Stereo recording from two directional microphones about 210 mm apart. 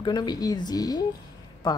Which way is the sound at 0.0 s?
20° left (ahead or behind).